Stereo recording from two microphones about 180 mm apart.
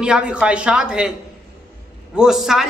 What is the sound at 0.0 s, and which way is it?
A man's voice, 5° right (ahead or behind).